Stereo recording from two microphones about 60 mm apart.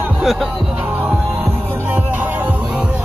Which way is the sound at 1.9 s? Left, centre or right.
Right.